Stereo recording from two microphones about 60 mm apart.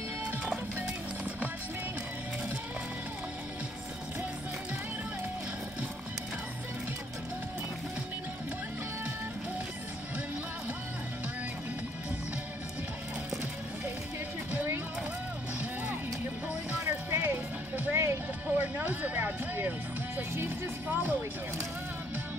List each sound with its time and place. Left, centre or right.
16.8 s music: right
18.6 s music: right